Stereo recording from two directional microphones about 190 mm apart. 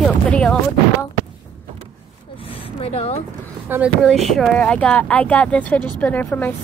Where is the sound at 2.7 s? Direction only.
35° left (ahead or behind).